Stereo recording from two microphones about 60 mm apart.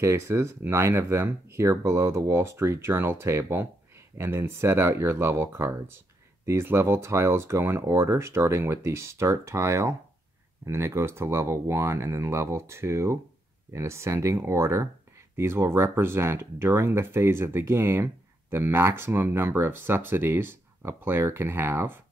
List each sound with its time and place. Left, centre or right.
0.0 s speech: right